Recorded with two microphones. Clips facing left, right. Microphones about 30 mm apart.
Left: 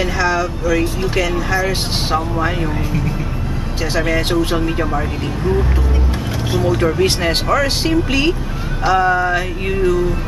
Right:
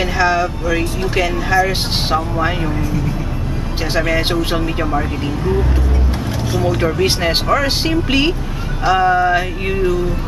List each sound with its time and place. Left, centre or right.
0.0 s speech: centre
3.9 s speech: centre
4.6 s music: centre
6.6 s speech: centre
8.8 s music: centre